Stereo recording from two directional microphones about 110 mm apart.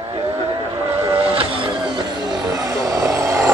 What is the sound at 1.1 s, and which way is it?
Music, 60° right (ahead or behind).